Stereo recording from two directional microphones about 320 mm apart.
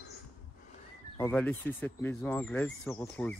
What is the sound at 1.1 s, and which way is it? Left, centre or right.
Speech, centre.